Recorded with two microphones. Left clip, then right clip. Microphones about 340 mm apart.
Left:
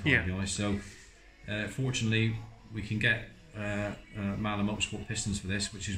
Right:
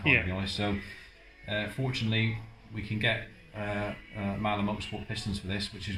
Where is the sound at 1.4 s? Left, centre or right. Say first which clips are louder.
Right 2 dB; centre.